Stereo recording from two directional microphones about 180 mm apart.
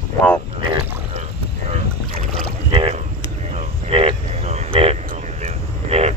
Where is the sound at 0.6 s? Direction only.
30° right (ahead or behind).